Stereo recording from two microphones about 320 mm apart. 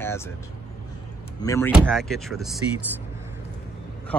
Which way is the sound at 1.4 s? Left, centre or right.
Centre.